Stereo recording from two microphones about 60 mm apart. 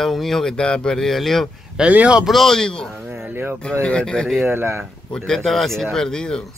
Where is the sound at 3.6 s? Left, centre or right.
Centre.